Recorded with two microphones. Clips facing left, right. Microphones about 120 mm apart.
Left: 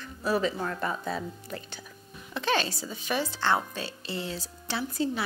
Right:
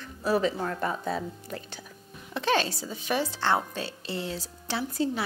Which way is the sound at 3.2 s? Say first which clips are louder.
Even; 30° right (ahead or behind).